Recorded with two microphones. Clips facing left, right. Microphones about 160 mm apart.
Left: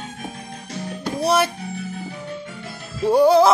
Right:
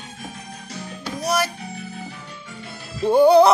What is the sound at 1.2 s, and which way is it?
Music, 30° left (ahead or behind).